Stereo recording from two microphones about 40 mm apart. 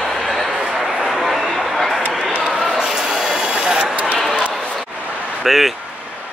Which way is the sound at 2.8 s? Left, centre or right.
Centre.